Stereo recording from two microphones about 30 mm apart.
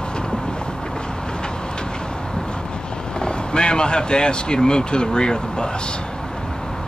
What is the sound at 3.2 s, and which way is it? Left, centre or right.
Speech, left.